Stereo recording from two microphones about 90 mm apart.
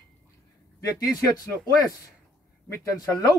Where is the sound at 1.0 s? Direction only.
45° left (ahead or behind).